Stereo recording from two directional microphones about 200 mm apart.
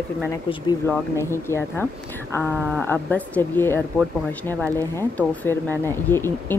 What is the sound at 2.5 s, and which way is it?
Speech, centre (ahead or behind).